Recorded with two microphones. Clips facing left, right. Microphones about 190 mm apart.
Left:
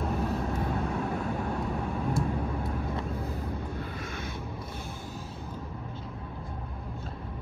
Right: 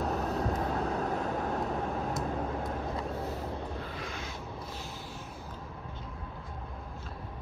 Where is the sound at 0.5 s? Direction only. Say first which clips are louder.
Even; 35° right (ahead or behind).